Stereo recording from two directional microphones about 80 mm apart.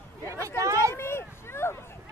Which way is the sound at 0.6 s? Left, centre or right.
Right.